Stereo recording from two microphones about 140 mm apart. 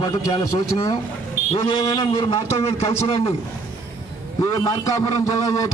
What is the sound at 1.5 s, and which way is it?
A man's voice, 35° left (ahead or behind).